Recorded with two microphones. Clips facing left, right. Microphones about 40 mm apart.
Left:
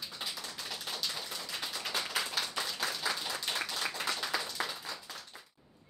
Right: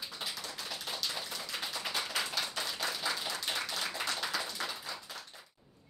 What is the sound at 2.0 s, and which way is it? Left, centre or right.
Clapping, centre.